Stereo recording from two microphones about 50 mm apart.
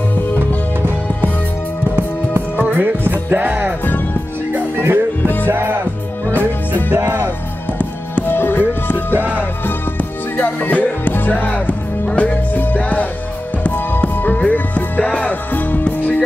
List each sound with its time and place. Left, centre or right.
2.7 s music: right
8.2 s music: left
10.3 s music: left